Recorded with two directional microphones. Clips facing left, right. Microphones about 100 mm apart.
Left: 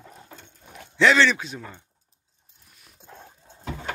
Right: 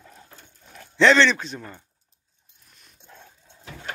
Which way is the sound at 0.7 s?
10° left (ahead or behind).